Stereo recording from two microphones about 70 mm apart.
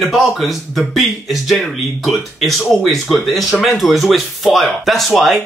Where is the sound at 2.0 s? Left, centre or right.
Centre.